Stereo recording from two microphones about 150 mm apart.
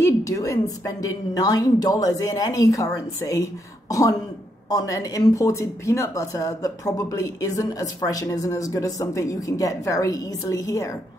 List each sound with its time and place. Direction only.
0.0 s speech: 20° left (ahead or behind)
4.6 s speech: 25° left (ahead or behind)